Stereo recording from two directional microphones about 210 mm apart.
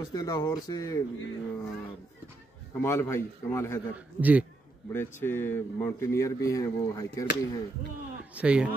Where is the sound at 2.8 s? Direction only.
10° left (ahead or behind).